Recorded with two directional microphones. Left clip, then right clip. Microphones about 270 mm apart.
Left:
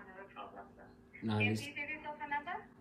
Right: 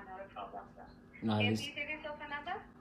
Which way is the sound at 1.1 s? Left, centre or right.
Centre.